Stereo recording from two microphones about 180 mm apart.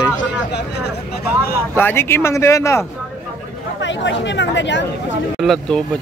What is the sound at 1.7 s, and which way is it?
Speech, 15° left (ahead or behind).